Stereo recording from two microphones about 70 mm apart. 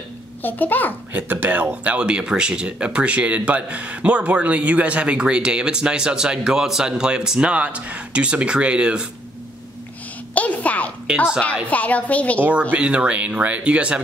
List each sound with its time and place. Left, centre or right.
0.4 s a woman's voice: left
1.1 s speech: right
10.3 s a sound: left
11.1 s speech: centre
11.7 s a woman's voice: left
12.4 s speech: right